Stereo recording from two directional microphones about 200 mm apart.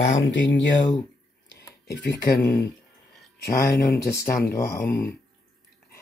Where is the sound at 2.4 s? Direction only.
60° left (ahead or behind).